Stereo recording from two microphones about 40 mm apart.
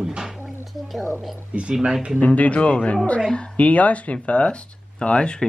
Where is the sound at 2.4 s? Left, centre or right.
Left.